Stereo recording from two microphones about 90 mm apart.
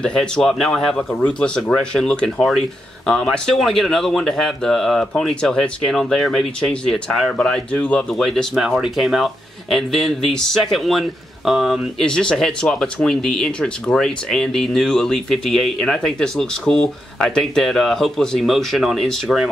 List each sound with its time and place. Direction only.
0.0 s speech: 10° left (ahead or behind)
7.3 s speech: 10° left (ahead or behind)
8.1 s speech: 5° left (ahead or behind)